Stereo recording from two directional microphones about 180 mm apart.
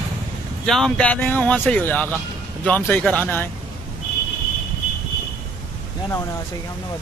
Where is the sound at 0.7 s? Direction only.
5° left (ahead or behind).